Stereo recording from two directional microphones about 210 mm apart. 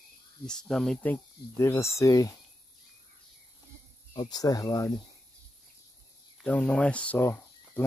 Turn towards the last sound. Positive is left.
turn(degrees=10)  # may be behind; listen again after turning